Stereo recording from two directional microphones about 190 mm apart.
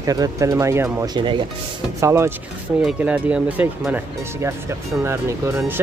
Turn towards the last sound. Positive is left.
turn(degrees=-15)  # may be behind; listen again after turning